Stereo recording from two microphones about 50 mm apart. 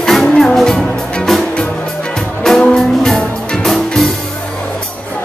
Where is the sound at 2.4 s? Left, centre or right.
Centre.